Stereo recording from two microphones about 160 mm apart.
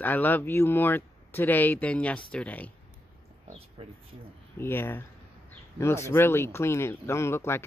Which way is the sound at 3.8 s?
40° right (ahead or behind).